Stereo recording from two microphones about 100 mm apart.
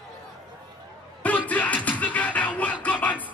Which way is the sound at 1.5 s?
15° left (ahead or behind).